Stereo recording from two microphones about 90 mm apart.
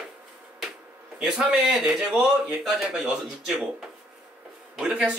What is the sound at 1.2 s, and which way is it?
A man's voice, 5° right (ahead or behind).